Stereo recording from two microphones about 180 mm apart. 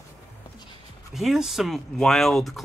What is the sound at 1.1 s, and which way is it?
Speech, centre (ahead or behind).